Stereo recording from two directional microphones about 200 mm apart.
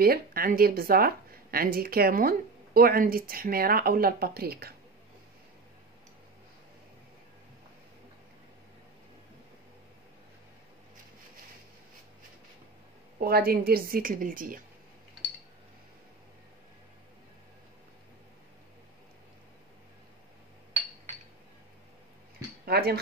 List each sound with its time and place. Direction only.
0.0 s a woman's voice: 50° right (ahead or behind)
13.2 s a woman's voice: 50° right (ahead or behind)
22.7 s a woman's voice: 50° right (ahead or behind)